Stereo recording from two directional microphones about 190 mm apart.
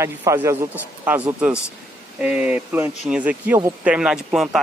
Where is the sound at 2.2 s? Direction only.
5° right (ahead or behind).